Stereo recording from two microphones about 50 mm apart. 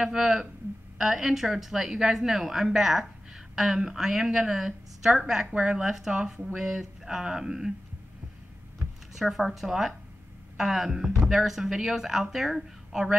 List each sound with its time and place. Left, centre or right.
0.0 s a woman's voice: centre
5.5 s speech: right
5.8 s a woman's voice: centre
9.1 s a woman's voice: centre